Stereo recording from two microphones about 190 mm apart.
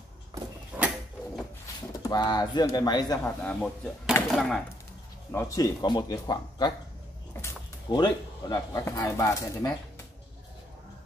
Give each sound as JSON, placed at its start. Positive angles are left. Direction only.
{"t": 0.7, "sound": "mechanisms", "side_deg": -10}
{"t": 2.0, "sound": "speech", "side_deg": 20}
{"t": 3.3, "sound": "speech", "side_deg": 5}
{"t": 5.3, "sound": "speech", "side_deg": 15}